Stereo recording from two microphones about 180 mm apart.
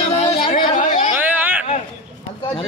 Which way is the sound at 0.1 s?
35° left (ahead or behind).